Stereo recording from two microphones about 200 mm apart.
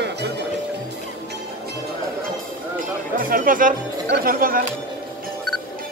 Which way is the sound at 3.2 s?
45° right (ahead or behind).